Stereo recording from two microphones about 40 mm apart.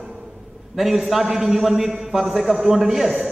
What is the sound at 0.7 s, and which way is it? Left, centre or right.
A man's voice, centre.